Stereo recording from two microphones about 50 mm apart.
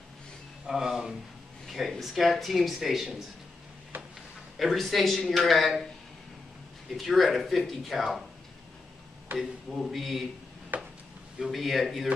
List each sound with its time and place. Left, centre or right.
0.7 s speech: centre
3.9 s a sound: right
4.6 s speech: centre
7.0 s speech: centre
9.4 s speech: centre
10.7 s a sound: right
11.3 s speech: centre